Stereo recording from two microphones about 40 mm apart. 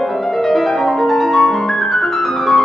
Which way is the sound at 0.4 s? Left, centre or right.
Centre.